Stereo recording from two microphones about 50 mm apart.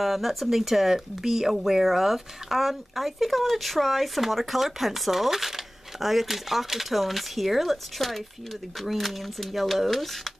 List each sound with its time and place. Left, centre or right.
0.0 s speech: centre